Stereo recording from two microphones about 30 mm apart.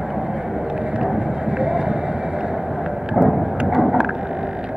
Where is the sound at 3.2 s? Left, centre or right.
Centre.